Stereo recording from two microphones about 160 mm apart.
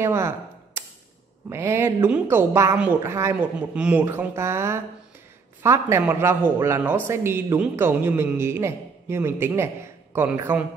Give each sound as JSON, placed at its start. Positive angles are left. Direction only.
{"t": 0.0, "sound": "a man's voice", "side_deg": -15}
{"t": 1.5, "sound": "a man's voice", "side_deg": -15}